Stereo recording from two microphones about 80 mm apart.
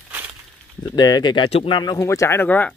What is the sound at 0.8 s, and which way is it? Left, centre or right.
Speech, left.